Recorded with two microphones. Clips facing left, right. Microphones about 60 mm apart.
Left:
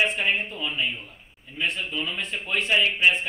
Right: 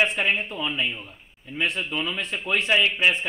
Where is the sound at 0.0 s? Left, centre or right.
Right.